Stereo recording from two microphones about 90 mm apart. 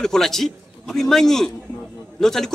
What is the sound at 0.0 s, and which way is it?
Speech, 5° left (ahead or behind).